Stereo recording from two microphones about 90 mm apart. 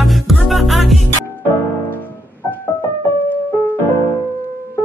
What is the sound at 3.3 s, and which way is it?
Music, 20° left (ahead or behind).